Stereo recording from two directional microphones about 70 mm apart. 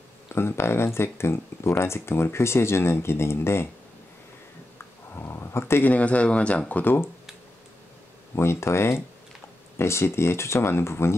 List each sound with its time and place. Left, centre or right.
0.3 s speech: left
4.7 s a sound: left
5.9 s speech: centre
6.7 s speech: left
8.4 s speech: left